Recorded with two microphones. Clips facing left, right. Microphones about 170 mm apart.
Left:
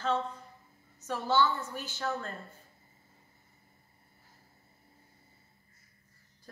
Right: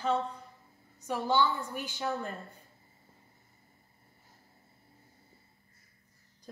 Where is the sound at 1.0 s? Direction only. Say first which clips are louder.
Even; 15° right (ahead or behind).